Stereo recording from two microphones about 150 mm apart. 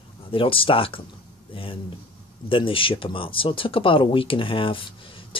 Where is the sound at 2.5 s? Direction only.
35° left (ahead or behind).